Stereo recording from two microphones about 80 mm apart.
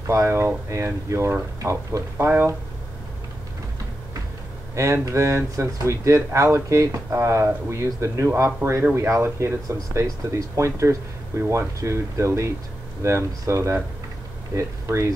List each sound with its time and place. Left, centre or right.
0.0 s speech: right
4.7 s speech: right